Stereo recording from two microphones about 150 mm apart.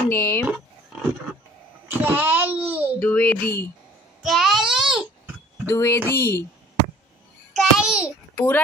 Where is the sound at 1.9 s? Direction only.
10° right (ahead or behind).